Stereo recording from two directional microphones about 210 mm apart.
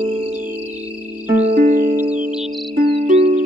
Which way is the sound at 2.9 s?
30° right (ahead or behind).